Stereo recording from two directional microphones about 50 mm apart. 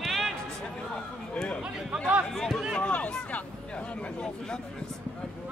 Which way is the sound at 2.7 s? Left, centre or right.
Left.